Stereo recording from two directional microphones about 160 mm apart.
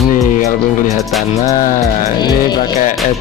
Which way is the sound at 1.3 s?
45° left (ahead or behind).